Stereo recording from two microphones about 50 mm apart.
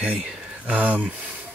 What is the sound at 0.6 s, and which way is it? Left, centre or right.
Speech, right.